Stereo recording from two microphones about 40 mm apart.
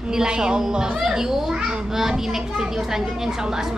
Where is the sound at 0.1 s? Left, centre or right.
Centre.